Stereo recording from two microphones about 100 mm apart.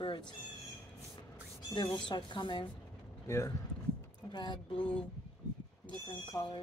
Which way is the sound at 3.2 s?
30° left (ahead or behind).